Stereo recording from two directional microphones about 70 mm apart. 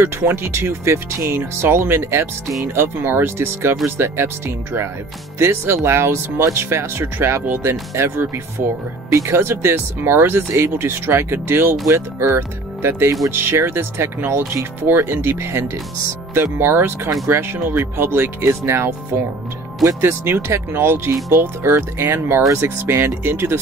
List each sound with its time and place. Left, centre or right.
0.0 s speech: right
5.4 s speech: right
11.9 s speech: right
12.4 s speech: right